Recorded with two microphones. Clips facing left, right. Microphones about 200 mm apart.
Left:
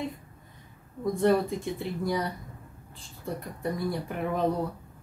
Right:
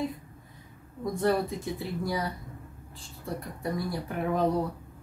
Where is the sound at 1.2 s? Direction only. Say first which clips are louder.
Left 3 dB; centre (ahead or behind).